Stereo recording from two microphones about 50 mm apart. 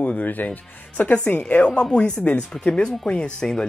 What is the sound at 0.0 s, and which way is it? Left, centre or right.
Speech, left.